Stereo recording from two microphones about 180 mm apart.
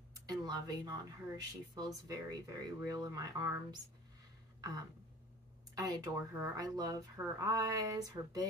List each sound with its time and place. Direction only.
0.1 s speech: 20° right (ahead or behind)
4.6 s a sound: 20° right (ahead or behind)
5.8 s speech: 20° right (ahead or behind)